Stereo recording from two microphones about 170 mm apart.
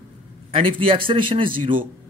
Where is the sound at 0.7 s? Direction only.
30° right (ahead or behind).